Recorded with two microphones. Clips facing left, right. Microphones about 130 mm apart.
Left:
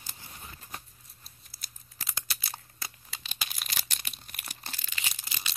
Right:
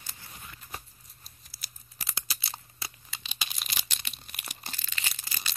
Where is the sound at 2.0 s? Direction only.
5° right (ahead or behind).